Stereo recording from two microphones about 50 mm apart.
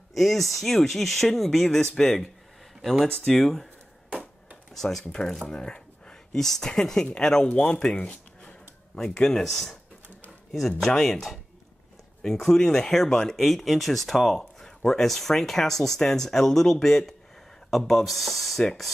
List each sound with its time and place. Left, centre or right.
0.1 s speech: centre
4.7 s speech: centre; by 8.5 s left
8.9 s speech: centre
11.0 s speech: centre